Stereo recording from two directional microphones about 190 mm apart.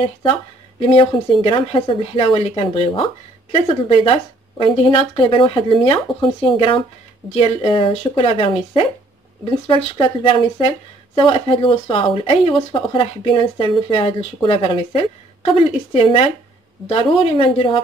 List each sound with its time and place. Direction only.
0.0 s speech: 25° left (ahead or behind)
7.3 s speech: 30° left (ahead or behind)